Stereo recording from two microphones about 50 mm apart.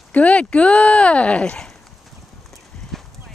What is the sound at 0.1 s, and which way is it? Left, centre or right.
Speech, left.